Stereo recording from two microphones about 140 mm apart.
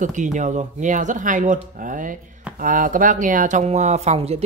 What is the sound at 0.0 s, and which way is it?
Speech, 60° right (ahead or behind).